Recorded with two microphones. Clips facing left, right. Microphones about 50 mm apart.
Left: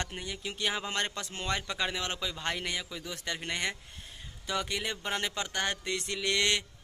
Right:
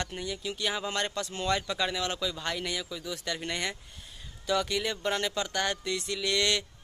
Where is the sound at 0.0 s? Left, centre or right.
Left.